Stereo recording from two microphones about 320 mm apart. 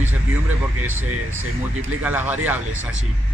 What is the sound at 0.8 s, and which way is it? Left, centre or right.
Speech, right.